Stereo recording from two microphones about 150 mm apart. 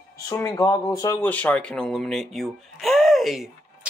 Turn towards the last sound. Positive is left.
turn(degrees=0)  # may be behind; listen again after turning